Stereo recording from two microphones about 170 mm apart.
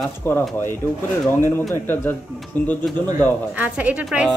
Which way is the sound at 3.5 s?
10° right (ahead or behind).